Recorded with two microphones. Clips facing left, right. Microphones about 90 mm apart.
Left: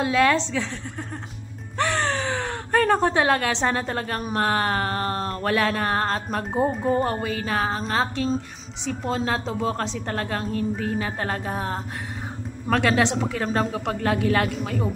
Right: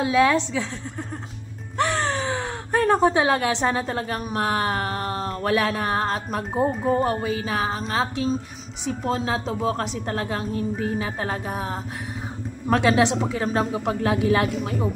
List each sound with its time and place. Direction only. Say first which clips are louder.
0.0 s a woman's voice: right 1 dB; 15° right (ahead or behind)
1.8 s gasp: right 1 dB; 10° right (ahead or behind)
3.6 s a woman's voice: right 1 dB; 5° right (ahead or behind)